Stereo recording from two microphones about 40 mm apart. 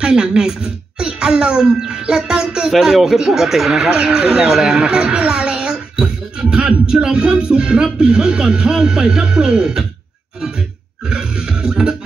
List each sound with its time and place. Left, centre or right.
0.0 s speech: right
3.9 s music: centre
4.5 s a child's voice: centre
6.5 s music: centre
11.1 s music: right